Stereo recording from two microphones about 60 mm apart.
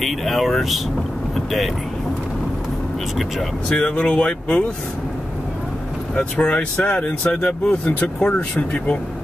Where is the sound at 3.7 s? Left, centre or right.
Centre.